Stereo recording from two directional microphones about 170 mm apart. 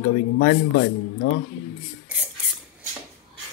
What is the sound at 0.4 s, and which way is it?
Speech, 55° left (ahead or behind).